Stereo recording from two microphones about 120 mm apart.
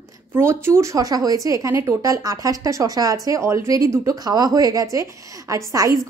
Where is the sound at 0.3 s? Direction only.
20° right (ahead or behind).